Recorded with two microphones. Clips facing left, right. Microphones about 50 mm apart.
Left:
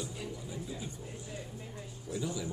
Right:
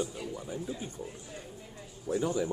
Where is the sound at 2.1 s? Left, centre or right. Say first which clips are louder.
Right 7 dB; right.